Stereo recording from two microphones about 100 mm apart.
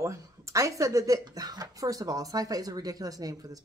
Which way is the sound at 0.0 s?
30° right (ahead or behind).